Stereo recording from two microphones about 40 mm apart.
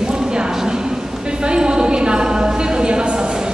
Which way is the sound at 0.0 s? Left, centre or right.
Centre.